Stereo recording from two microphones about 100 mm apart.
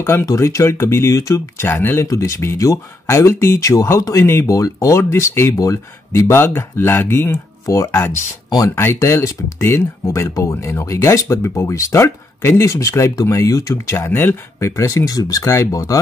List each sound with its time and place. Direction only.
0.0 s speech: 25° left (ahead or behind)
1.7 s speech: 20° left (ahead or behind)
2.0 s speech: 30° left (ahead or behind)